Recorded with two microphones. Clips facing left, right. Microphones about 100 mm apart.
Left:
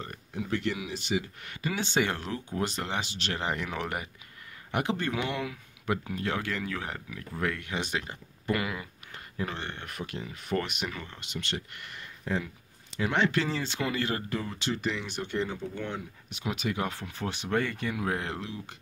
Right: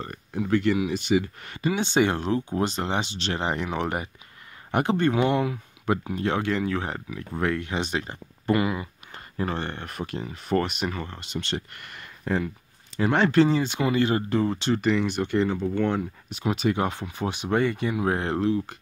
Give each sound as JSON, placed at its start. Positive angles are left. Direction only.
{"t": 0.3, "sound": "speech", "side_deg": -60}
{"t": 1.4, "sound": "speech", "side_deg": -35}
{"t": 1.7, "sound": "speech", "side_deg": -20}
{"t": 9.4, "sound": "speech", "side_deg": -40}
{"t": 11.7, "sound": "speech", "side_deg": -55}
{"t": 12.9, "sound": "speech", "side_deg": -40}
{"t": 13.5, "sound": "speech", "side_deg": -15}
{"t": 14.8, "sound": "speech", "side_deg": -60}
{"t": 16.3, "sound": "speech", "side_deg": -35}
{"t": 17.0, "sound": "speech", "side_deg": -15}
{"t": 18.0, "sound": "speech", "side_deg": -35}